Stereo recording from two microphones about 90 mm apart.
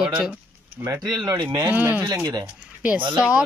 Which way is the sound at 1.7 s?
15° right (ahead or behind).